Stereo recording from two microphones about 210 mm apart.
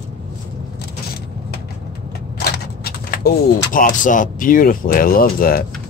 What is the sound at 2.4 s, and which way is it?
Speech, 45° left (ahead or behind).